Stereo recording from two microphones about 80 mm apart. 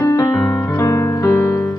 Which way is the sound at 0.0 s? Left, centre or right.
Left.